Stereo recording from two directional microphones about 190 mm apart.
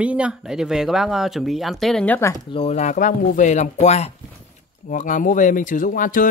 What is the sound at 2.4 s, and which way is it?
Speech, 30° left (ahead or behind).